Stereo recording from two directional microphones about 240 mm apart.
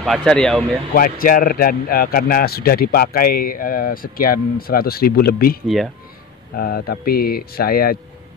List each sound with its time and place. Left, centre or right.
0.0 s speech: centre
0.9 s a man's voice: left